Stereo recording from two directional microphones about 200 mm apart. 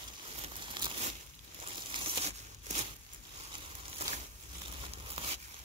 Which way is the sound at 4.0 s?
30° right (ahead or behind).